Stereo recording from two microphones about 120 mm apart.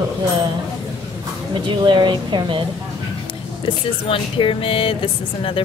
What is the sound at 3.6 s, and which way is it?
Speech, 45° left (ahead or behind).